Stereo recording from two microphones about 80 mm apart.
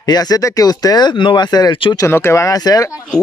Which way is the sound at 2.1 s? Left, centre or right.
Left.